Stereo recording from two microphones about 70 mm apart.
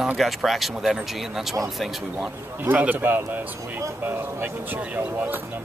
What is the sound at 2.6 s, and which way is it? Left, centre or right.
Speech, right.